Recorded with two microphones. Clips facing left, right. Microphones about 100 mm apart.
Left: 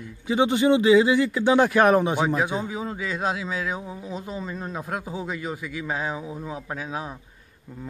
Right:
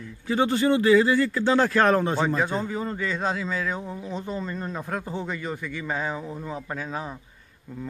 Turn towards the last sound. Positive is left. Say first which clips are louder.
# even
turn(degrees=5)  # may be behind; listen again after turning